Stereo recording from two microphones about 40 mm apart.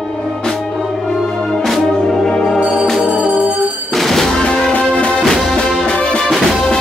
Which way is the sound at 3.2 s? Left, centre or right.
Right.